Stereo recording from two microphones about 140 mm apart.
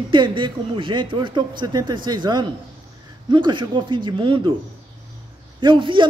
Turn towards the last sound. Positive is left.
turn(degrees=-35)  # may be behind; listen again after turning